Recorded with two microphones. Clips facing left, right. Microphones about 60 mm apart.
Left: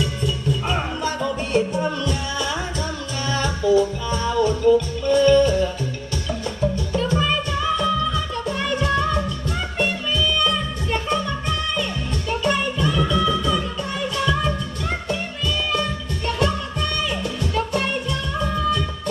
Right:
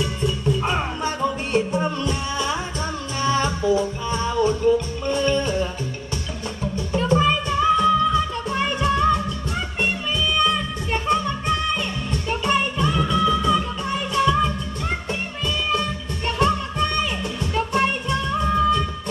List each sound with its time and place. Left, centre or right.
0.0 s music: right
6.7 s music: right